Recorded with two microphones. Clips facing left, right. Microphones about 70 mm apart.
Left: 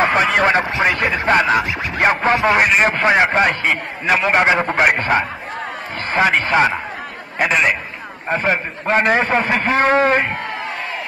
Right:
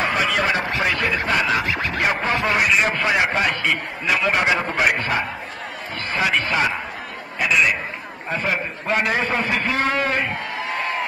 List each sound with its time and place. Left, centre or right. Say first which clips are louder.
0.0 s a sound: left 6 dB; left
0.7 s speech: left 4 dB; left
6.1 s a man's voice: left 6 dB; left